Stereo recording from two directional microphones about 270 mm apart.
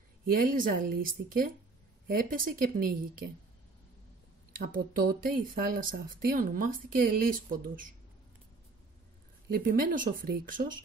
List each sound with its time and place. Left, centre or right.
0.3 s speech: right
4.5 s speech: right
9.5 s speech: right